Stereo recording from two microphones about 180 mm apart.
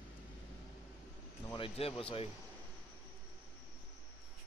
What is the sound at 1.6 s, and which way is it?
Speech, 30° left (ahead or behind).